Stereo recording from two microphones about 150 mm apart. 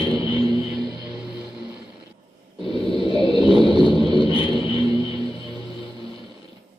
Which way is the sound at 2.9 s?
35° right (ahead or behind).